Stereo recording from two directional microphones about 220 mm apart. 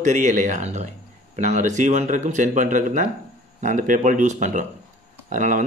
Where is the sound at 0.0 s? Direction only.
35° right (ahead or behind).